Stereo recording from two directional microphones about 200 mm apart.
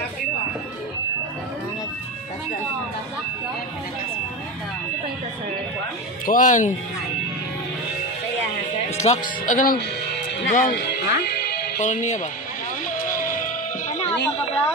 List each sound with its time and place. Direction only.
6.2 s speech: 40° left (ahead or behind)
8.9 s music: 35° left (ahead or behind)
9.5 s speech: 40° left (ahead or behind)
10.8 s music: 55° left (ahead or behind)
11.8 s speech: 35° left (ahead or behind)
12.8 s a sound: 40° left (ahead or behind)
13.8 s music: 35° left (ahead or behind)